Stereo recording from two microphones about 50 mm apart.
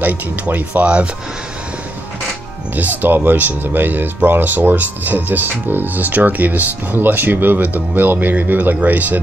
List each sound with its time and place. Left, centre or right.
0.0 s speech: right
2.7 s speech: right